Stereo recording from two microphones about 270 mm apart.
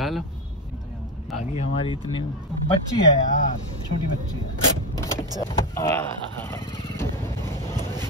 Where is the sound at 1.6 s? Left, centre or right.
Centre.